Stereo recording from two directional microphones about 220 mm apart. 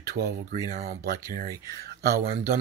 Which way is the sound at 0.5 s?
35° right (ahead or behind).